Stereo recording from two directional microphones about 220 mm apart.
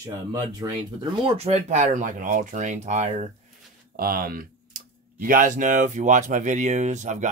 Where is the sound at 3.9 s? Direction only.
40° right (ahead or behind).